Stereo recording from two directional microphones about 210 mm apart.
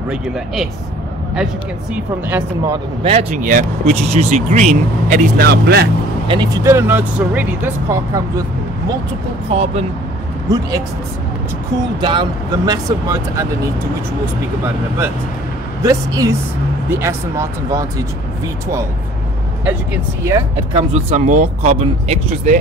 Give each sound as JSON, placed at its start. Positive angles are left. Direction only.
{"t": 2.0, "sound": "speech", "side_deg": -10}
{"t": 3.1, "sound": "speech", "side_deg": -30}
{"t": 5.1, "sound": "speech", "side_deg": -50}
{"t": 6.2, "sound": "speech", "side_deg": -20}
{"t": 9.5, "sound": "speech", "side_deg": -30}
{"t": 12.0, "sound": "speech", "side_deg": -25}
{"t": 15.8, "sound": "speech", "side_deg": -15}
{"t": 19.6, "sound": "speech", "side_deg": -15}
{"t": 20.7, "sound": "speech", "side_deg": -30}